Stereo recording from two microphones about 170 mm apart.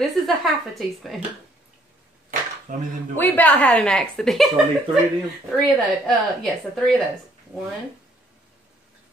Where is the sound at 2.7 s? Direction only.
50° right (ahead or behind).